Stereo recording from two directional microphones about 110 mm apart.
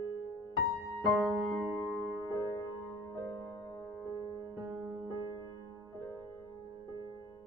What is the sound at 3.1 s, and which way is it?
Music, 35° left (ahead or behind).